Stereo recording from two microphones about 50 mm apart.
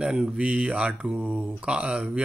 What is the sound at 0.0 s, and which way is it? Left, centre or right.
Speech, centre.